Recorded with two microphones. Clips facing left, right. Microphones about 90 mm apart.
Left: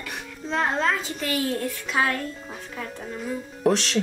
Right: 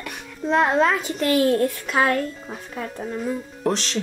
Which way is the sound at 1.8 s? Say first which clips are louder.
Right 4 dB; 50° right (ahead or behind).